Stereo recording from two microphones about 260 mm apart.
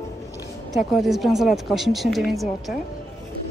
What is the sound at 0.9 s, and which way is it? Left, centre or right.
Speech, centre.